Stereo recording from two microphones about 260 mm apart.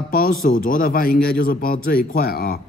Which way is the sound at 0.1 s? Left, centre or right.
Left.